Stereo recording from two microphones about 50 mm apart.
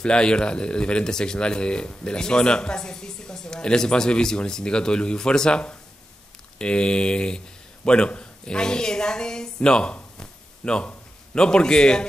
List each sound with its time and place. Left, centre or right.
0.0 s speech: centre